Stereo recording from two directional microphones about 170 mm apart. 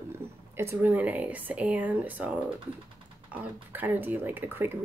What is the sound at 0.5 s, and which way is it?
Speech, 10° right (ahead or behind).